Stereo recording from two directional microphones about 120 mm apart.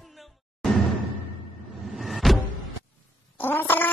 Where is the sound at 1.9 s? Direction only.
Centre (ahead or behind).